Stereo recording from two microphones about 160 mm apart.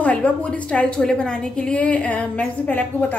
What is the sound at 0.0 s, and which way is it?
A woman's voice, 10° left (ahead or behind).